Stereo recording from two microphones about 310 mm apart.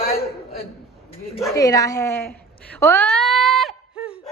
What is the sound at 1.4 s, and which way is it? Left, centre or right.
Speech, centre.